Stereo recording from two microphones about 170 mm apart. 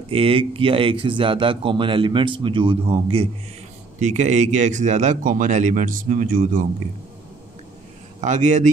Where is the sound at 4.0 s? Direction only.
45° right (ahead or behind).